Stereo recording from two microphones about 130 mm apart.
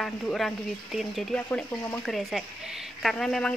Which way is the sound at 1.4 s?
15° left (ahead or behind).